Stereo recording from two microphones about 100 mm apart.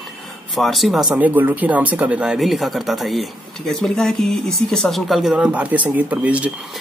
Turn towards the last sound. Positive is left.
turn(degrees=-15)  # may be behind; listen again after turning